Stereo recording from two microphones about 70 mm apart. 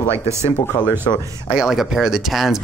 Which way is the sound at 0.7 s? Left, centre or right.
Left.